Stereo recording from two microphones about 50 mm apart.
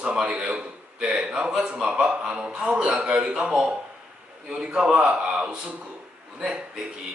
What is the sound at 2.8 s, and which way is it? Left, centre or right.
Speech, centre.